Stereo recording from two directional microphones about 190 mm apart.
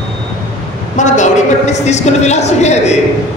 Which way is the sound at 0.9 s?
40° left (ahead or behind).